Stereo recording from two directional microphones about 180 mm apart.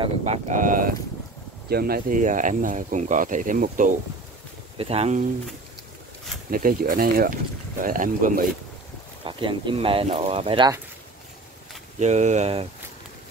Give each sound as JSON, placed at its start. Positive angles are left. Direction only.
{"t": 0.0, "sound": "speech", "side_deg": -40}
{"t": 4.7, "sound": "speech", "side_deg": -35}
{"t": 6.5, "sound": "speech", "side_deg": -50}
{"t": 9.2, "sound": "speech", "side_deg": -30}
{"t": 12.0, "sound": "speech", "side_deg": -40}